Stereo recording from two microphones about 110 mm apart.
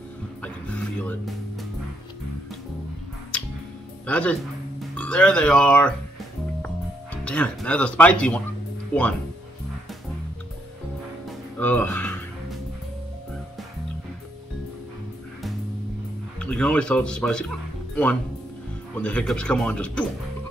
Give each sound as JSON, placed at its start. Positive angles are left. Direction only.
{"t": 4.0, "sound": "speech", "side_deg": 15}
{"t": 7.2, "sound": "speech", "side_deg": 10}
{"t": 11.5, "sound": "speech", "side_deg": 15}
{"t": 16.3, "sound": "speech", "side_deg": 10}